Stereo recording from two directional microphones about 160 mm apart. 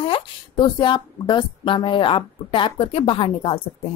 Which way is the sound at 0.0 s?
30° left (ahead or behind).